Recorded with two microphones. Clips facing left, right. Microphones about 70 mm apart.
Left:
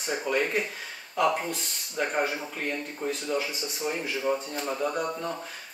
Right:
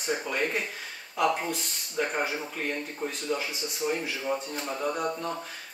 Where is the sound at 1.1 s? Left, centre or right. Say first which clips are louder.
Left 1 dB; centre.